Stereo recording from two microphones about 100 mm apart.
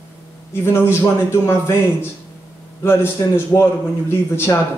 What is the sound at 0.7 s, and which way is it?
Speech, 25° left (ahead or behind).